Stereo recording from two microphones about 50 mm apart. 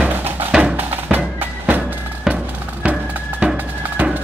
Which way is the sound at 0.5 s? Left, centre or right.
Centre.